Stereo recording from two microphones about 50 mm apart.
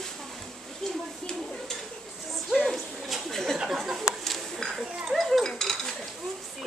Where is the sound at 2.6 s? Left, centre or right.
Centre.